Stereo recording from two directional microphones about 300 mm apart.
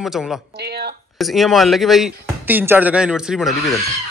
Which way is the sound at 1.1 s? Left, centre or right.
Centre.